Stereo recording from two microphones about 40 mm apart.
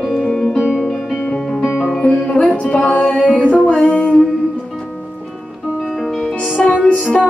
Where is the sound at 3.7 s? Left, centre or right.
Left.